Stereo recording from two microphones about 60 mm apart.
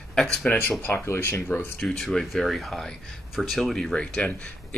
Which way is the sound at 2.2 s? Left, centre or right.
Centre.